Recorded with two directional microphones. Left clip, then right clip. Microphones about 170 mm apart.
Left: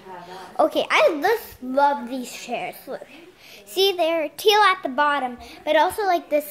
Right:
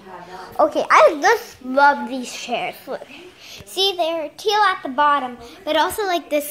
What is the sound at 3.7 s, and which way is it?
Child singing, 50° left (ahead or behind).